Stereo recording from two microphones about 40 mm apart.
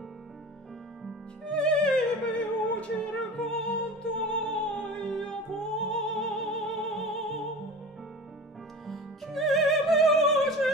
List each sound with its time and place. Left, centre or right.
1.4 s music: left
3.3 s music: centre
8.8 s music: centre